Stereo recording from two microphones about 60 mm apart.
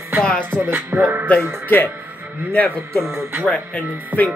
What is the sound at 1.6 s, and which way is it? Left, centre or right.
Speech, left.